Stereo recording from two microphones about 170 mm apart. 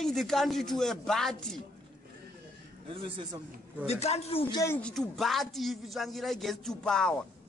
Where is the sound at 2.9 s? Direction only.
30° right (ahead or behind).